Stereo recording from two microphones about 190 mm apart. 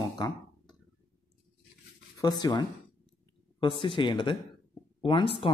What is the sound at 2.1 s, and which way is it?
Speech, 20° left (ahead or behind).